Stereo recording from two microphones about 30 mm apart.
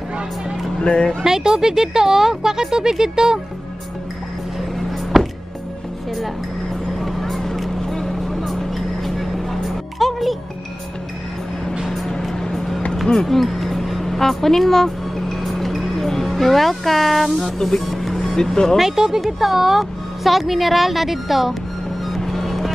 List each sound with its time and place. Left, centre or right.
0.7 s speech: left
1.2 s speech: centre
4.6 s music: centre
6.7 s vehicle: centre
8.1 s music: centre
11.9 s vehicle: centre
16.1 s speech: centre
17.6 s speech: centre
17.8 s music: centre
18.4 s speech: left
18.8 s speech: centre
22.3 s music: centre